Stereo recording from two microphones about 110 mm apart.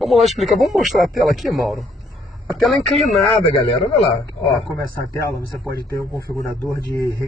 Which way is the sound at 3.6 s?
70° left (ahead or behind).